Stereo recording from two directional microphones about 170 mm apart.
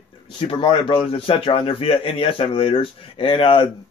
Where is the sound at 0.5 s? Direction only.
30° left (ahead or behind).